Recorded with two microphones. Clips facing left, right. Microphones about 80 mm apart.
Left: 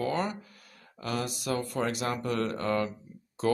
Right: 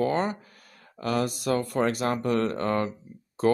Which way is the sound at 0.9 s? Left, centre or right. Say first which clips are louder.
Right 6 dB; right.